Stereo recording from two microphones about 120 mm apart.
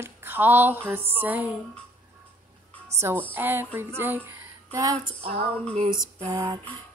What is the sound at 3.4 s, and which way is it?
Music, 15° right (ahead or behind).